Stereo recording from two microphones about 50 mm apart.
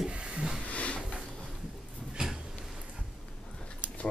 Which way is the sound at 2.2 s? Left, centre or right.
Centre.